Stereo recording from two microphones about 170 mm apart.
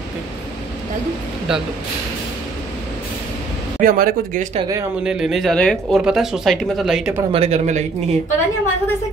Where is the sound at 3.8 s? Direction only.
55° right (ahead or behind).